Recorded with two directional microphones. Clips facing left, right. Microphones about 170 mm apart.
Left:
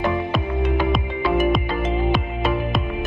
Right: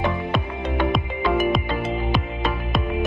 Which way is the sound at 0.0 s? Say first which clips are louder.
Left 2 dB; centre (ahead or behind).